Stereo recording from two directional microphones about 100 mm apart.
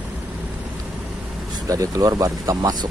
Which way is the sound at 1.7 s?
35° right (ahead or behind).